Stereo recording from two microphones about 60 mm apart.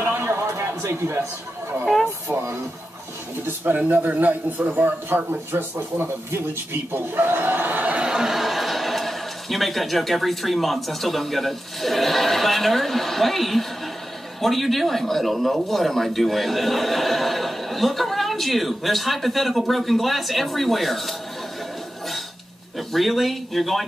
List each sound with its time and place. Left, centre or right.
0.0 s a sound: right
3.7 s a man's voice: right
8.1 s speech: centre
22.8 s speech: centre